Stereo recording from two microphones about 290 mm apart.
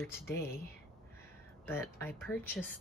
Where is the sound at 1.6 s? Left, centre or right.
Centre.